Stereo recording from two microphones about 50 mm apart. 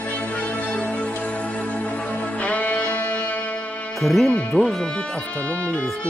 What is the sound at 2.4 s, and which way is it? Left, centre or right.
Music, left.